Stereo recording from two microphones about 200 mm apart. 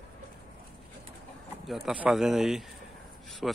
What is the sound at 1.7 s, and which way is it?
Speech, 5° right (ahead or behind).